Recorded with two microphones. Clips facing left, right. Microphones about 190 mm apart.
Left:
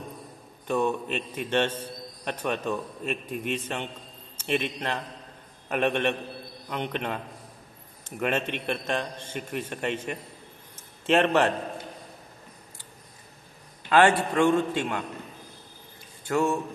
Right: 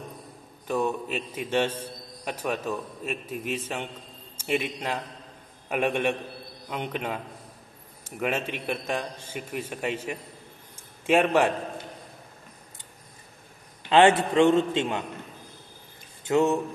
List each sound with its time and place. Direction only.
0.7 s a man's voice: 5° right (ahead or behind)
13.8 s a man's voice: 20° right (ahead or behind)
16.3 s a sound: 20° right (ahead or behind)